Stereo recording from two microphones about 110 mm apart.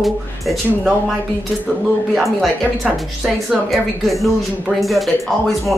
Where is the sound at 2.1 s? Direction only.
Centre (ahead or behind).